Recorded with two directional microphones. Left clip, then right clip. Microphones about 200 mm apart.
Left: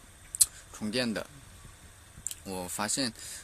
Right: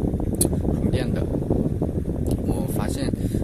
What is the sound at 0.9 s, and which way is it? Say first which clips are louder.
Speech: even; 10° right (ahead or behind).